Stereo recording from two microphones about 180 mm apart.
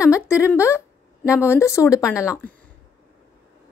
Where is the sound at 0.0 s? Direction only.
15° left (ahead or behind).